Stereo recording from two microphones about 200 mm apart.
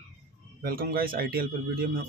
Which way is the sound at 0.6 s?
50° right (ahead or behind).